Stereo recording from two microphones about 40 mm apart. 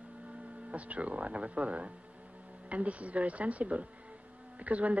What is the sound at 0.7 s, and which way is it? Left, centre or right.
Speech, right.